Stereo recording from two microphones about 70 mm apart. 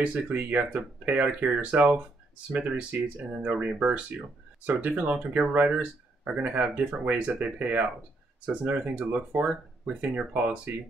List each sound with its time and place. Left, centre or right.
0.0 s speech: right